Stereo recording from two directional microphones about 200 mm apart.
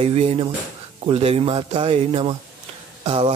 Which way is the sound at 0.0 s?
30° right (ahead or behind).